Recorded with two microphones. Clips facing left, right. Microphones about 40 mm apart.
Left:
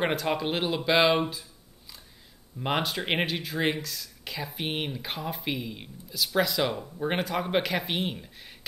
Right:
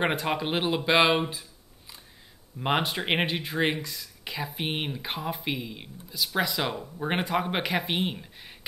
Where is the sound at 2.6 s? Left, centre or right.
Centre.